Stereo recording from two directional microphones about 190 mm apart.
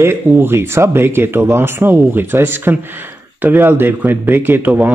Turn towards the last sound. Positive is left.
turn(degrees=-10)  # may be behind; listen again after turning